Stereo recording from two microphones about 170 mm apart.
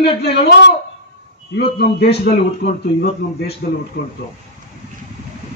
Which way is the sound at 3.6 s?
60° left (ahead or behind).